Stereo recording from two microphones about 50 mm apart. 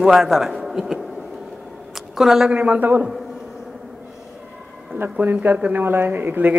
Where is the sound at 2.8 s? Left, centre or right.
Right.